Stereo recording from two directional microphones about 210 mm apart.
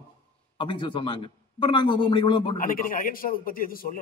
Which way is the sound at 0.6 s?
25° left (ahead or behind).